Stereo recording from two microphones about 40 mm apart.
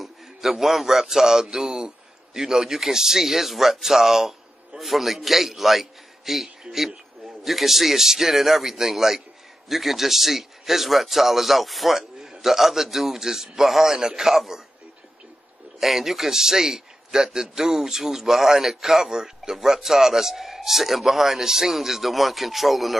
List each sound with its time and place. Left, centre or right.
0.0 s a man's voice: centre
15.8 s a man's voice: centre